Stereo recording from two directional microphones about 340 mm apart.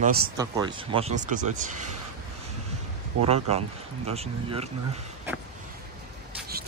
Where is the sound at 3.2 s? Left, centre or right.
Centre.